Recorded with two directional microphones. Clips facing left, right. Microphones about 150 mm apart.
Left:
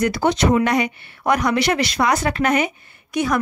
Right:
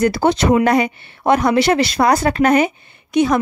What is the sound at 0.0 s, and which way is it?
Speech, 35° right (ahead or behind).